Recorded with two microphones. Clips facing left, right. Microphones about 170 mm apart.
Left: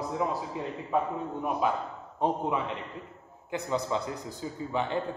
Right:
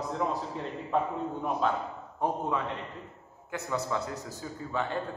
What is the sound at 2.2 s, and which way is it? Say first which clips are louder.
A man's voice: left 2 dB; 15° left (ahead or behind).